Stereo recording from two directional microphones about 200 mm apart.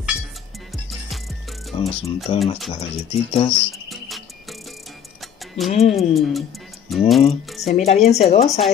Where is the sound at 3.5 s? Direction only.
Centre (ahead or behind).